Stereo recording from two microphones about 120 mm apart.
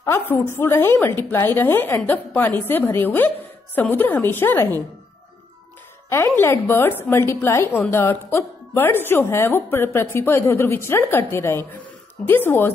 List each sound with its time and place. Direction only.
0.0 s a woman's voice: 20° left (ahead or behind)
6.0 s a woman's voice: 20° left (ahead or behind)